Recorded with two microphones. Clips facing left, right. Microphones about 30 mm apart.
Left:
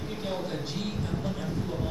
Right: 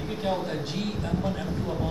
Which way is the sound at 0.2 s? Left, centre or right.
Centre.